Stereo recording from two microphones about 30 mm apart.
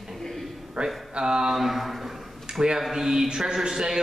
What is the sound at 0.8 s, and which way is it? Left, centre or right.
Speech, centre.